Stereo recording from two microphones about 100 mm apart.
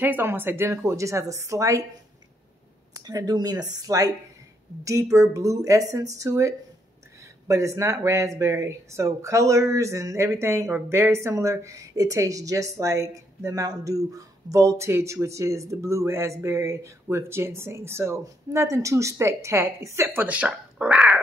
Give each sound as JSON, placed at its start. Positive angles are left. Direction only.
{"t": 0.0, "sound": "speech", "side_deg": -20}
{"t": 2.9, "sound": "speech", "side_deg": -40}